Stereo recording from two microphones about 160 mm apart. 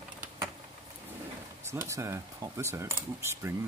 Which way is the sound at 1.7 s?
15° right (ahead or behind).